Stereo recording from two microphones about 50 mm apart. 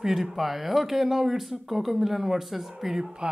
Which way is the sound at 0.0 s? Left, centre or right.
Centre.